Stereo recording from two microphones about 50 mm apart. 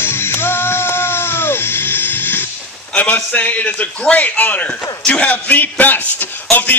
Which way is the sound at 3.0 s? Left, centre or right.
Left.